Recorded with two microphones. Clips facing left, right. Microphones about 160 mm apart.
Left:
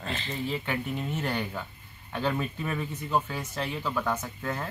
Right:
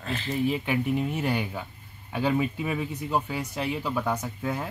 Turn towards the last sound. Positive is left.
turn(degrees=-10)  # may be behind; listen again after turning